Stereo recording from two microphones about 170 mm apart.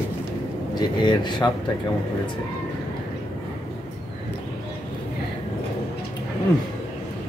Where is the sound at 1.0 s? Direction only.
25° left (ahead or behind).